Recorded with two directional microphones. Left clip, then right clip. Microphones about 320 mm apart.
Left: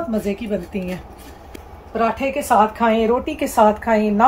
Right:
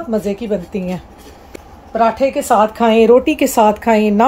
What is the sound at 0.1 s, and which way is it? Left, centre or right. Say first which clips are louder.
A woman's voice: right 5 dB; centre.